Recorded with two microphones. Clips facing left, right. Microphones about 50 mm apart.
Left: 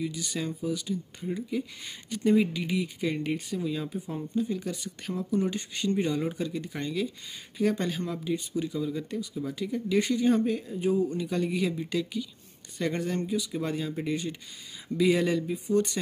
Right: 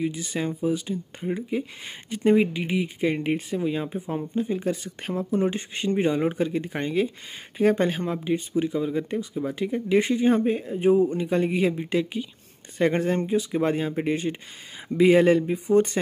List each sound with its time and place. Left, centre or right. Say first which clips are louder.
0.0 s speech: right 5 dB; right